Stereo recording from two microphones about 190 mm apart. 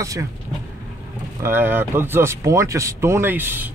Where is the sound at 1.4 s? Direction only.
10° right (ahead or behind).